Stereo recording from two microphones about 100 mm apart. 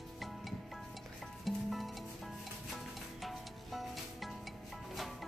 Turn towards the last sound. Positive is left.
turn(degrees=0)  # may be behind; listen again after turning